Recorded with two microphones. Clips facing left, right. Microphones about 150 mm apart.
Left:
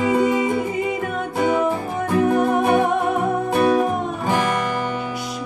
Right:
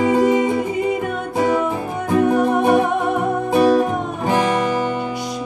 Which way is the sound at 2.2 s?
Centre (ahead or behind).